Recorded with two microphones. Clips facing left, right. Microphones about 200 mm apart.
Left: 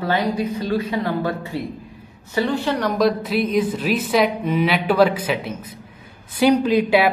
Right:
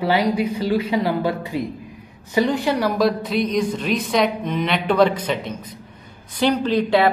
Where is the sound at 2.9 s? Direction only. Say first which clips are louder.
Left 1 dB; centre (ahead or behind).